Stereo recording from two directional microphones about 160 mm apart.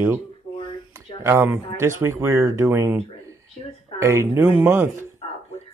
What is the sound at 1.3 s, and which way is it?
Speech, 15° right (ahead or behind).